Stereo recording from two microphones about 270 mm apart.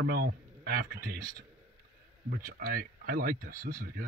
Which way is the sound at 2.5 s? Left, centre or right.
Right.